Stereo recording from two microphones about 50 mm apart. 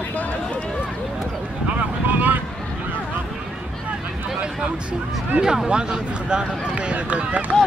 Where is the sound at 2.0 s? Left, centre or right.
Right.